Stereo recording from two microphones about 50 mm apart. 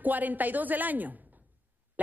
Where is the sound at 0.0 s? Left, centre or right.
Right.